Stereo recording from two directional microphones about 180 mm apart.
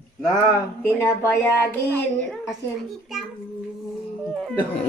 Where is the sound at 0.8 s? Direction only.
15° left (ahead or behind).